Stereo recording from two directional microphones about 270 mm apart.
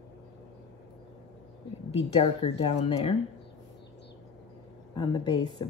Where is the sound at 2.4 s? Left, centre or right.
Left.